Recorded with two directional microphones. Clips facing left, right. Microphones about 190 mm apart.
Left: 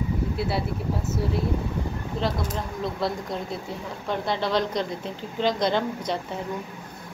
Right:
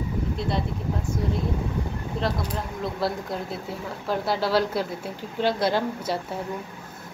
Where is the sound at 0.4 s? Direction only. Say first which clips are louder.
Left 1 dB; 5° left (ahead or behind).